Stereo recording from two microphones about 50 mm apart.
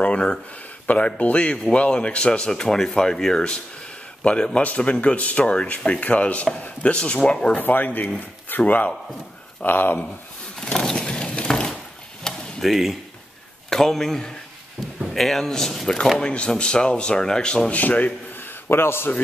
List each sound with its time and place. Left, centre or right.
0.0 s a sound: left
0.8 s speech: left
7.6 s speech: left
10.6 s a sound: centre
12.6 s a man's voice: centre
13.7 s a man's voice: centre
16.2 s speech: centre
17.7 s a man's voice: left
18.7 s a man's voice: left